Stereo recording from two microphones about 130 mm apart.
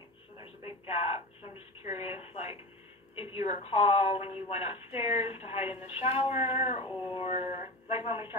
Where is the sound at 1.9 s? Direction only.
55° left (ahead or behind).